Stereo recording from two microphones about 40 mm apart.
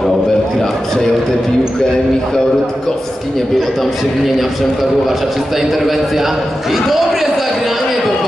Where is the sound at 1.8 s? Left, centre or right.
Centre.